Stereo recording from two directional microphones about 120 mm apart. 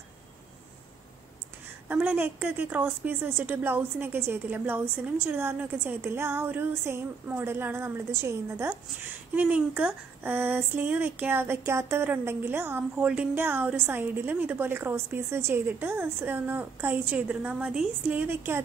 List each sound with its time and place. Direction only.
1.9 s a woman's voice: 15° right (ahead or behind)